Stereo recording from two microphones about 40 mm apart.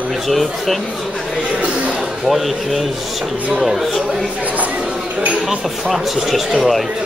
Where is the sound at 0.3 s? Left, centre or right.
Centre.